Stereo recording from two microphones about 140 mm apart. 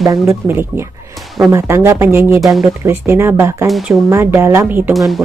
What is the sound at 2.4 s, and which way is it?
Speech, centre (ahead or behind).